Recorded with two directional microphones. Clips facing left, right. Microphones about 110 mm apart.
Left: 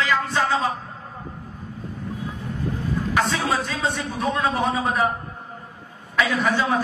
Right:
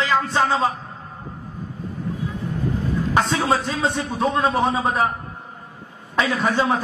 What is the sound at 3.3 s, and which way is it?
A man's voice, 20° right (ahead or behind).